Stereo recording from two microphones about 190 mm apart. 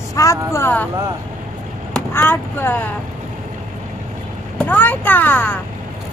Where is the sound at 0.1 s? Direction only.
15° left (ahead or behind).